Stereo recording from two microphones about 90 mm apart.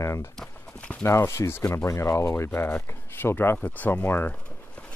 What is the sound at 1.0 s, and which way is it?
Speech, 30° left (ahead or behind).